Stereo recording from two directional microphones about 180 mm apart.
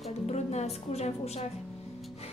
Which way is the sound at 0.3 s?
35° left (ahead or behind).